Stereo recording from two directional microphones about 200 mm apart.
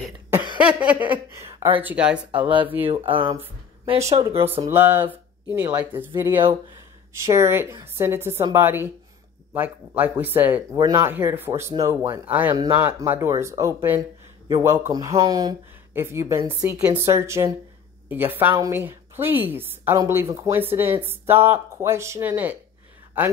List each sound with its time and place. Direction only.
0.6 s a woman's voice: 5° right (ahead or behind)
2.3 s speech: 25° right (ahead or behind)
3.4 s a sound: 30° right (ahead or behind)
4.6 s a woman's voice: 10° right (ahead or behind)